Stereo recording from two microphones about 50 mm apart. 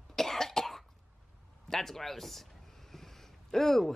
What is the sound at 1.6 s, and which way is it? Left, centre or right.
Speech, centre.